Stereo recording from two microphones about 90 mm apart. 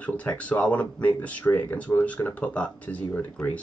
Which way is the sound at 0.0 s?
15° left (ahead or behind).